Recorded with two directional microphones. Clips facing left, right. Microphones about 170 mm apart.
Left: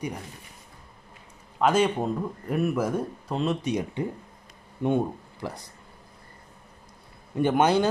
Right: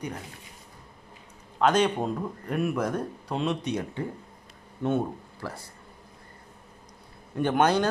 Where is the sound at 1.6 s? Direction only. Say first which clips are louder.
Left 1 dB; 5° left (ahead or behind).